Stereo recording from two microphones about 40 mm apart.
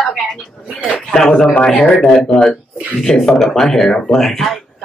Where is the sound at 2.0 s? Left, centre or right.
Centre.